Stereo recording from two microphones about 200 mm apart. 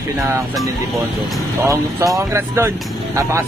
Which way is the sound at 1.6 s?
15° right (ahead or behind).